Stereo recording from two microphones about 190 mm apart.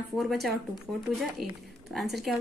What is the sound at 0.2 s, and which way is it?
Speech, centre (ahead or behind).